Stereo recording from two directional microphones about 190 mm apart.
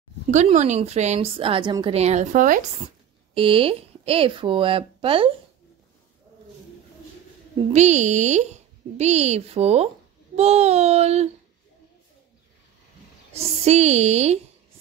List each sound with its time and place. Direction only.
0.3 s a woman's voice: 40° right (ahead or behind)
3.3 s speech: 30° right (ahead or behind)
7.7 s a woman's voice: 35° right (ahead or behind)
13.3 s a woman's voice: 35° right (ahead or behind)